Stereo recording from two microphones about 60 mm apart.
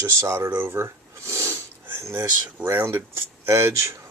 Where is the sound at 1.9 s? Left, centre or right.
Right.